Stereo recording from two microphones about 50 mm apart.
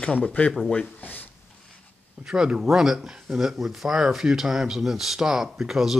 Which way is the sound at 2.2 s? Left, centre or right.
Centre.